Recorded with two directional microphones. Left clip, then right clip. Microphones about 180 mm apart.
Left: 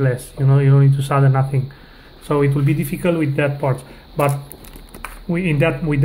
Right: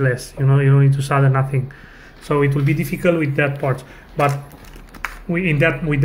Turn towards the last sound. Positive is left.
turn(degrees=10)  # may be behind; listen again after turning